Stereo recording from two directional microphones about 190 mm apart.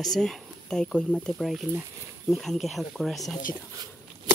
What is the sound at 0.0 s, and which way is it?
Speech, centre (ahead or behind).